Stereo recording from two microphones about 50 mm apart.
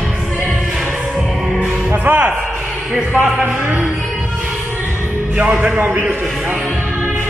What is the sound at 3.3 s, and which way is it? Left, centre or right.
Speech, right.